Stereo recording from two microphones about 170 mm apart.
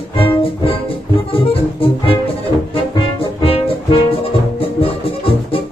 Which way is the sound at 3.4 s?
35° left (ahead or behind).